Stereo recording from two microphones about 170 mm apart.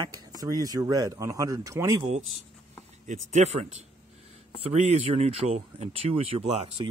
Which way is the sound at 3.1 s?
40° right (ahead or behind).